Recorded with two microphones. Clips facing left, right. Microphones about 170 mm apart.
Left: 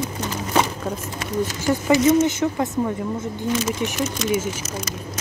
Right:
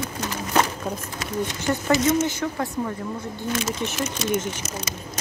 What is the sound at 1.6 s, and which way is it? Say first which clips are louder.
Speech: left 4 dB; 15° left (ahead or behind).